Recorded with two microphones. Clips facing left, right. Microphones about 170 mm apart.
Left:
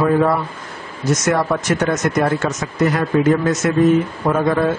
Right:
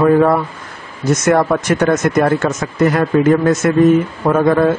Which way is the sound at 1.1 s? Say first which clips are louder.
Right 4 dB; 55° right (ahead or behind).